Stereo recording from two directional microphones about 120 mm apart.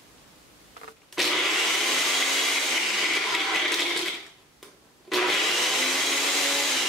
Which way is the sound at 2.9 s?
Centre (ahead or behind).